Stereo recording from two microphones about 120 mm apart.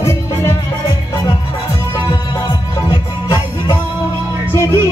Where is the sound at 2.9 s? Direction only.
35° left (ahead or behind).